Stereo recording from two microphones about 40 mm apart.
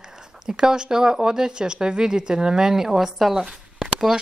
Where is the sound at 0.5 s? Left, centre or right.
Centre.